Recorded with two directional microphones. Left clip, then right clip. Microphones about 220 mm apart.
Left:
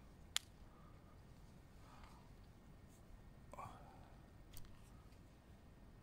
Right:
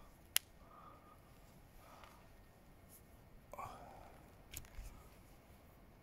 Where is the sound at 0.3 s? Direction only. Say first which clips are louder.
Right 4 dB; 15° right (ahead or behind).